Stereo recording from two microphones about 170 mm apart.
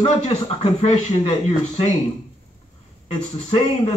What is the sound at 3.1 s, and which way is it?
Speech, 40° left (ahead or behind).